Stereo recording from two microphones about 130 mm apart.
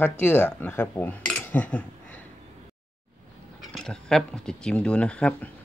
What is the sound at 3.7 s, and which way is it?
Speech, 5° left (ahead or behind).